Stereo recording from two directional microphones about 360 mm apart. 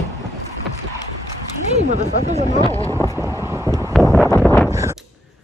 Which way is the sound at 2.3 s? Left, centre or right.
Centre.